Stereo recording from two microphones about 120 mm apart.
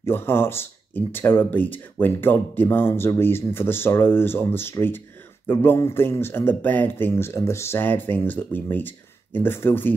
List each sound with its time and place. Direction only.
0.0 s speech: 20° left (ahead or behind)